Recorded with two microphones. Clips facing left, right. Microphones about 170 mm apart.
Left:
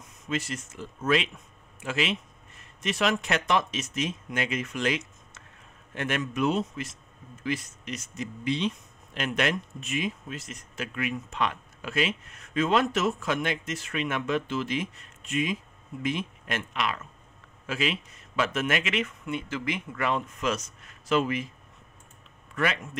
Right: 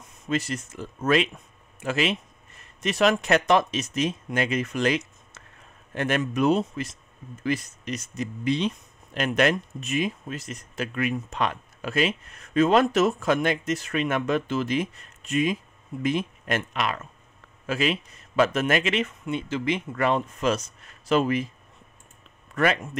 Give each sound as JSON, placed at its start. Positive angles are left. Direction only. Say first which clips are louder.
{"t": 0.3, "sound": "speech", "louder": "right 4 dB", "side_deg": -40}
{"t": 22.6, "sound": "speech", "louder": "right 5 dB", "side_deg": -40}